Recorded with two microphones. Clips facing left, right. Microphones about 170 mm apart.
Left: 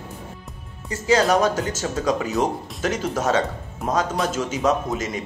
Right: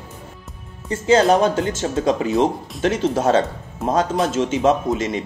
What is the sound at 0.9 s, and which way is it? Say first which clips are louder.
Speech: right 4 dB; 30° right (ahead or behind).